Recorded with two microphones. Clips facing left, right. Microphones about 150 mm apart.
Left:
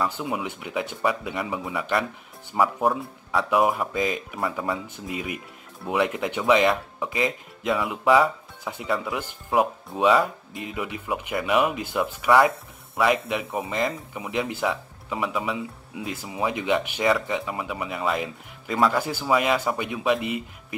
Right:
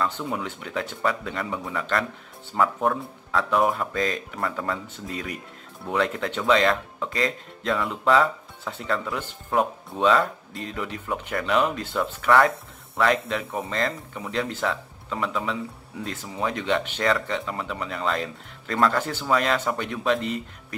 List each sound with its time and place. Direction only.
0.0 s speech: 10° left (ahead or behind)